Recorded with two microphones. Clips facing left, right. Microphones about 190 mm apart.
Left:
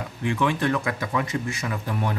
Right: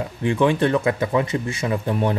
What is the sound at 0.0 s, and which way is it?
Speech, 30° right (ahead or behind).